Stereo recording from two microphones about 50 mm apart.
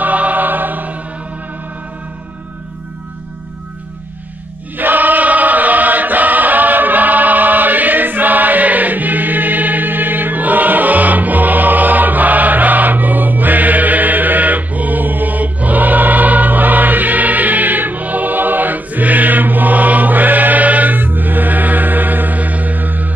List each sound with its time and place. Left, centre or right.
0.0 s choir: right
4.7 s choir: right